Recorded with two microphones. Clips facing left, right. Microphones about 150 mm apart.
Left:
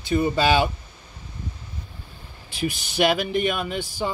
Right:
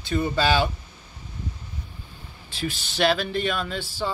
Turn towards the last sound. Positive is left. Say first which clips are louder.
# left 2 dB
turn(degrees=15)  # may be behind; listen again after turning